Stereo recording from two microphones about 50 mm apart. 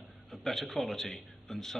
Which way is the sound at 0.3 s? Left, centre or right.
Centre.